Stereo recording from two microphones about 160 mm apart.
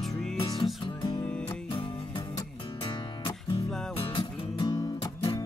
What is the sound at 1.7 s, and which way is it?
Music, 30° left (ahead or behind).